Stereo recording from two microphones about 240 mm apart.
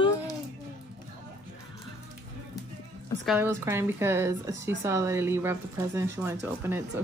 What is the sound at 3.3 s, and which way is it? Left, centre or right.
Speech, centre.